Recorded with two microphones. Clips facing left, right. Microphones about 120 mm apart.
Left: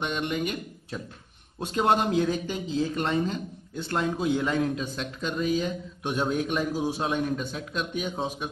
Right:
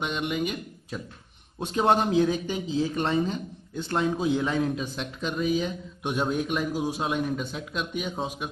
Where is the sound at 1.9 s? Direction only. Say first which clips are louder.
Right 2 dB; 20° right (ahead or behind).